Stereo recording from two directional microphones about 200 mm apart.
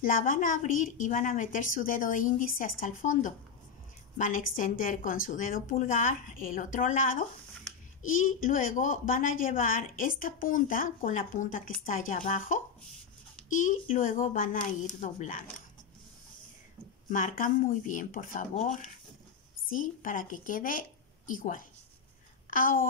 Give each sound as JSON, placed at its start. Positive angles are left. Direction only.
{"t": 0.0, "sound": "a woman's voice", "side_deg": 45}
{"t": 17.1, "sound": "a woman's voice", "side_deg": 40}